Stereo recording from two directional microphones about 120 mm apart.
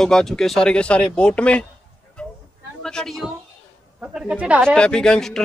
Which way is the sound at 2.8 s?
5° left (ahead or behind).